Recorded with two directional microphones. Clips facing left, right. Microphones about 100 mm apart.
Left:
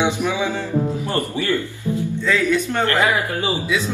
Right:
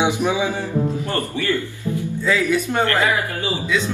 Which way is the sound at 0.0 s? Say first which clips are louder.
Right 1 dB; 20° right (ahead or behind).